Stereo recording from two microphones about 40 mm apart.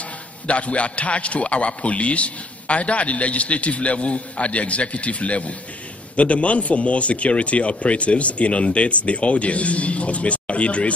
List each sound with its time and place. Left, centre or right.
0.5 s a man's voice: left